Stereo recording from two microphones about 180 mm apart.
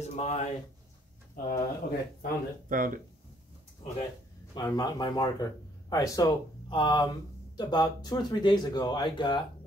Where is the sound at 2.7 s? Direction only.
50° right (ahead or behind).